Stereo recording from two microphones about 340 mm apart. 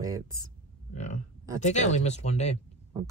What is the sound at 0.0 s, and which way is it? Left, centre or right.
Speech, centre.